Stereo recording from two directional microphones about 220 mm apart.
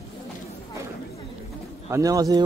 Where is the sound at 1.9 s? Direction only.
15° right (ahead or behind).